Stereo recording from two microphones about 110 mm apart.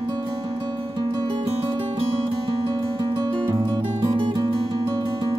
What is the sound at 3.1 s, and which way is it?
Music, 40° right (ahead or behind).